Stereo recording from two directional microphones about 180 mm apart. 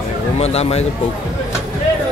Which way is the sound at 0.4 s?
35° left (ahead or behind).